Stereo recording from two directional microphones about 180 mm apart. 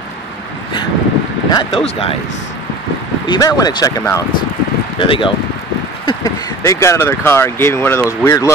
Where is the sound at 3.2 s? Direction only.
25° left (ahead or behind).